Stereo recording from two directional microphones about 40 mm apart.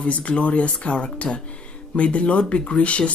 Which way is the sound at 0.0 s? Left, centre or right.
Left.